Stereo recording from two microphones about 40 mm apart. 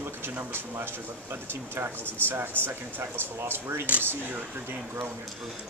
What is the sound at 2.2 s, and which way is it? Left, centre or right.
Speech, right.